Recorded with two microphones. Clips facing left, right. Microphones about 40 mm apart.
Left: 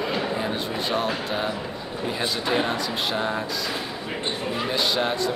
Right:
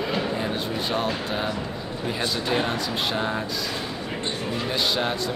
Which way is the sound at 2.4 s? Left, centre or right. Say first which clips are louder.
Left 2 dB; centre.